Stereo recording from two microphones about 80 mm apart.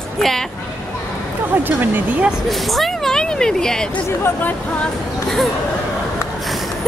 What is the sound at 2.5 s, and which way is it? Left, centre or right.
Speech, centre.